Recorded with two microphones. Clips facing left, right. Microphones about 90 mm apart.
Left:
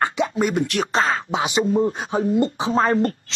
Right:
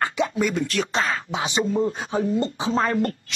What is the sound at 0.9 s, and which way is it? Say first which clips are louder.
Speech: left 6 dB; 35° left (ahead or behind).